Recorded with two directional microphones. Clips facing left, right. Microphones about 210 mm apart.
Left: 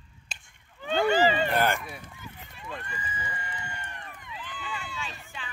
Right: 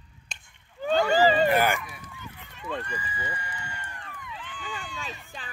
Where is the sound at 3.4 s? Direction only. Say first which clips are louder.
Even; 25° left (ahead or behind).